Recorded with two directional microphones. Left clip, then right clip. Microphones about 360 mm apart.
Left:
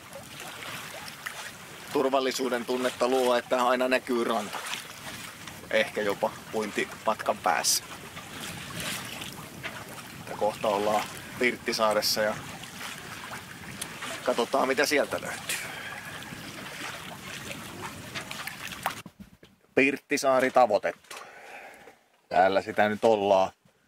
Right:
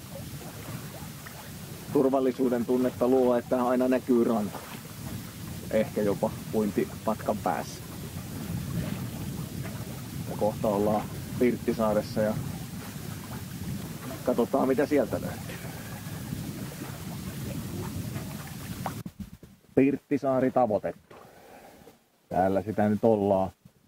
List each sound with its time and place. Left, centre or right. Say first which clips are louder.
1.9 s speech: right 1 dB; centre
10.3 s speech: left 1 dB; centre
14.0 s a sound: even; centre
14.4 s speech: even; centre
17.8 s a sound: left 3 dB; centre
19.7 s speech: left 1 dB; centre
20.6 s speech: left 3 dB; centre
22.3 s speech: left 3 dB; centre
23.1 s speech: left 3 dB; left